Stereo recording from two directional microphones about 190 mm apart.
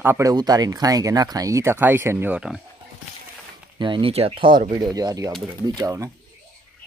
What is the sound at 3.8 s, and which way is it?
Speech, 25° right (ahead or behind).